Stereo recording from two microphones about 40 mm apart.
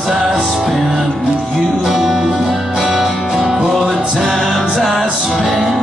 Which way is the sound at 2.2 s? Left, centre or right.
Centre.